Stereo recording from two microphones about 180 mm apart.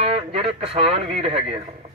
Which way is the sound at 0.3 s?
35° right (ahead or behind).